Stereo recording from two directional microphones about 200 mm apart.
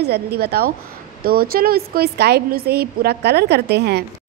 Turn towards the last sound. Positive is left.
turn(degrees=-55)  # may be behind; listen again after turning